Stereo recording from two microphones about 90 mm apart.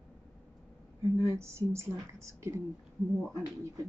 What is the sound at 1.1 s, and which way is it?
Speech, 30° right (ahead or behind).